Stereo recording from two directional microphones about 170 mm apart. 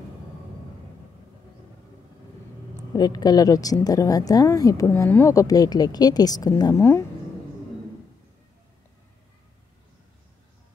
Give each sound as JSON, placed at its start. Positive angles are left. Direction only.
{"t": 2.9, "sound": "a woman's voice", "side_deg": 25}